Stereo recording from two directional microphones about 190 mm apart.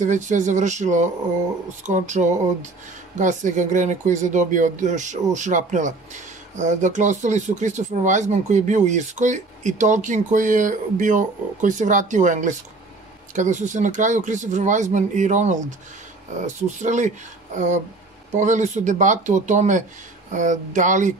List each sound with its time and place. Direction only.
0.0 s speech: 40° right (ahead or behind)
18.3 s speech: 40° right (ahead or behind)